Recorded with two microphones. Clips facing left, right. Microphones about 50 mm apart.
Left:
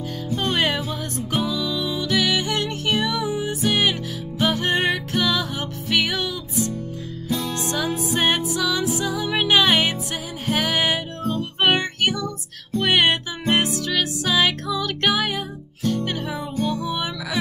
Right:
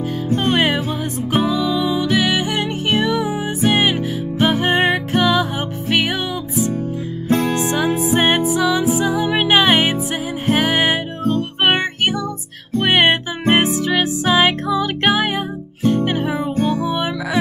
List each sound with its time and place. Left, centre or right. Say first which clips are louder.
0.4 s music: right 4 dB; right
2.9 s music: right 4 dB; right
7.2 s music: right 9 dB; right
7.5 s music: right 6 dB; right